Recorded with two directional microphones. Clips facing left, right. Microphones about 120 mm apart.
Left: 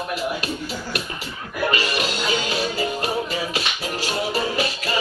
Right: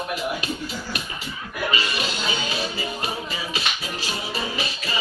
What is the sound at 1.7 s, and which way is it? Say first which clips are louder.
Music: left 3 dB; 55° left (ahead or behind).